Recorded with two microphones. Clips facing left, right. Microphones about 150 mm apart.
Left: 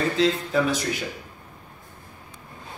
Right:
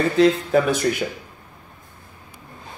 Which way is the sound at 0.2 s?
55° right (ahead or behind).